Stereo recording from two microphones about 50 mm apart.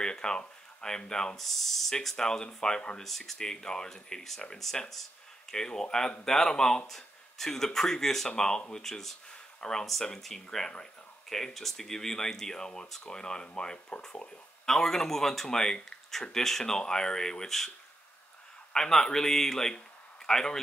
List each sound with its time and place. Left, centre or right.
0.0 s speech: centre
3.0 s speech: centre; by 14.3 s left
14.7 s speech: centre